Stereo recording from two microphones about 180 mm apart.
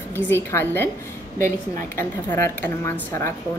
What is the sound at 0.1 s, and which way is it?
Speech, 15° left (ahead or behind).